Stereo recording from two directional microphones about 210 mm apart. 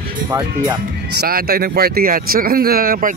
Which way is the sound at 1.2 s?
45° right (ahead or behind).